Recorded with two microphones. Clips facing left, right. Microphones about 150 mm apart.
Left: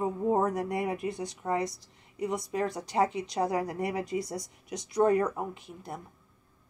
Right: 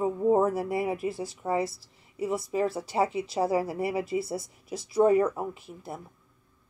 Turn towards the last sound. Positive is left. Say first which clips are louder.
# right 1 dB
turn(degrees=-5)  # may be behind; listen again after turning